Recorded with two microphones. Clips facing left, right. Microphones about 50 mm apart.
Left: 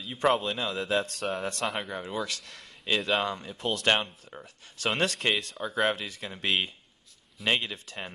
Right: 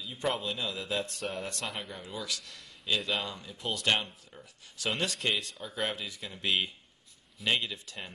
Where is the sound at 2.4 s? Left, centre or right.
Left.